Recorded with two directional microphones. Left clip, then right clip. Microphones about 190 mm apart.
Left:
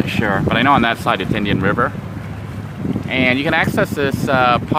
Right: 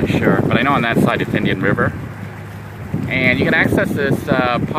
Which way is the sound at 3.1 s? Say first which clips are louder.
Right 1 dB; 15° left (ahead or behind).